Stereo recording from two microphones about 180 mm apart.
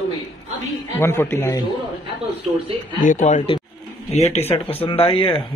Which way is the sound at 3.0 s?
45° left (ahead or behind).